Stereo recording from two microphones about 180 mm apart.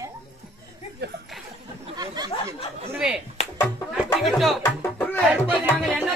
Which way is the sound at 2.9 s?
5° right (ahead or behind).